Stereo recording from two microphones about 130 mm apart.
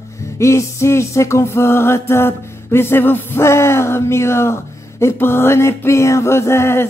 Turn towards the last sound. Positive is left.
turn(degrees=20)  # may be behind; listen again after turning